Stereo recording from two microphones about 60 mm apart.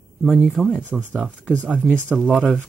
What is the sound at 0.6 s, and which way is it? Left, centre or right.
Speech, centre.